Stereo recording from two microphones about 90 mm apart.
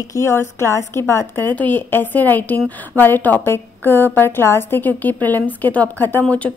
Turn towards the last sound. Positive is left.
turn(degrees=15)  # may be behind; listen again after turning